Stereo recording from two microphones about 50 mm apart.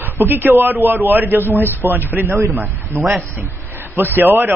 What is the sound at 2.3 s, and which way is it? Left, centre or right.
Speech, right.